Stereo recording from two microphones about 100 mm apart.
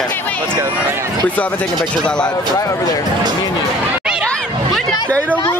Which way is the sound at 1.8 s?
10° left (ahead or behind).